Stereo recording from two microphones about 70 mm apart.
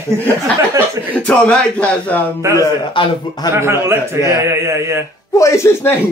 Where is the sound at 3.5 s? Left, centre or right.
Right.